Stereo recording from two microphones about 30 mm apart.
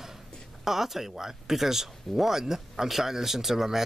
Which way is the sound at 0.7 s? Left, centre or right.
Centre.